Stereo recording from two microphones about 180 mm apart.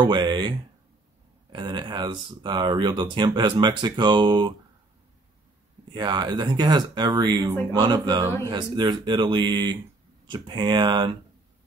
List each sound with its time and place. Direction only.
0.0 s speech: 25° right (ahead or behind)
5.9 s speech: 25° right (ahead or behind)